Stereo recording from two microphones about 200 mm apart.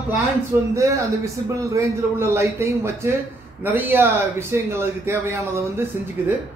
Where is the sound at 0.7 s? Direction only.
15° right (ahead or behind).